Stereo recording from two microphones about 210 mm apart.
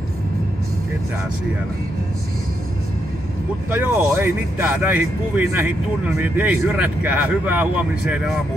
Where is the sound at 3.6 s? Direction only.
10° right (ahead or behind).